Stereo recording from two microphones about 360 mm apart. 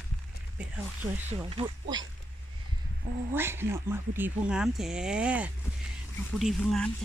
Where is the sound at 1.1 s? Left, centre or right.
Centre.